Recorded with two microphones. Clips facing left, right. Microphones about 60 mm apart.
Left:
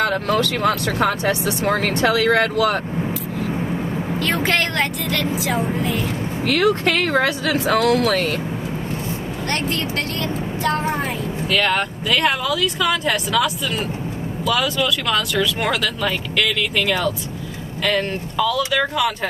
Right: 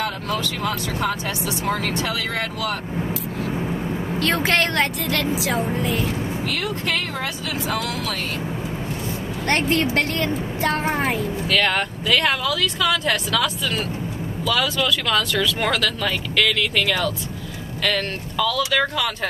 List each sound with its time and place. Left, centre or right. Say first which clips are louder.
0.0 s speech: left 6 dB; left
4.2 s speech: even; centre
6.4 s speech: left 13 dB; left
9.5 s speech: right 4 dB; right
11.4 s speech: left 2 dB; centre